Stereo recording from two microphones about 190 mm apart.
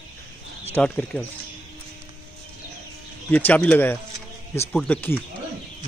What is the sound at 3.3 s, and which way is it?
Speech, 10° left (ahead or behind).